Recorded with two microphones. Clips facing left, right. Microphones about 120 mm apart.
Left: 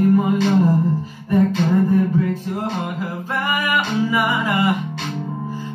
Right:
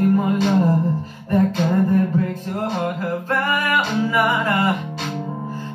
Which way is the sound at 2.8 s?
5° left (ahead or behind).